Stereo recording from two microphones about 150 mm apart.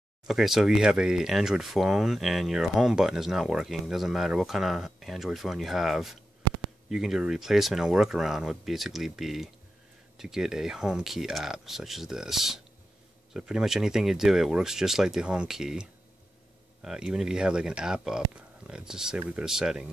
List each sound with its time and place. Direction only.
0.3 s speech: centre (ahead or behind)